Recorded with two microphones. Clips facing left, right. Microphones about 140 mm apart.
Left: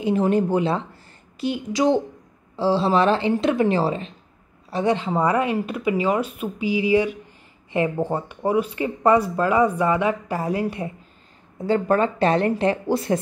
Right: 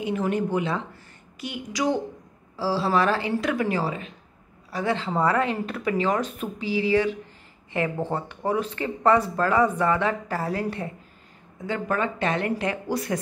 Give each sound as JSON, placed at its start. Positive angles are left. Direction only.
{"t": 0.0, "sound": "a woman's voice", "side_deg": 30}
{"t": 11.5, "sound": "speech", "side_deg": 30}